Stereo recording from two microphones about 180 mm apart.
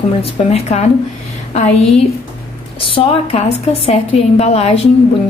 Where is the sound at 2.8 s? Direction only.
30° left (ahead or behind).